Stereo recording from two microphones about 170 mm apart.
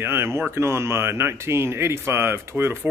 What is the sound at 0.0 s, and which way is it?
Speech, 15° right (ahead or behind).